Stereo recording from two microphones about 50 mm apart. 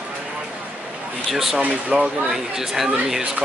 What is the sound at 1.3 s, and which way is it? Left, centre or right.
Speech, centre.